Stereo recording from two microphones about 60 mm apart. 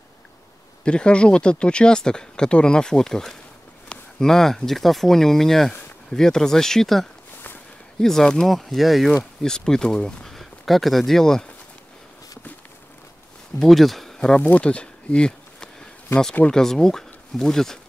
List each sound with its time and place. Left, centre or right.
0.8 s speech: centre
9.4 s speech: centre
13.6 s speech: centre
14.4 s a sound: left
16.4 s speech: centre